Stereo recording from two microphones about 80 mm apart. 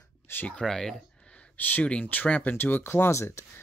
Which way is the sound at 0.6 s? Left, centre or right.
Centre.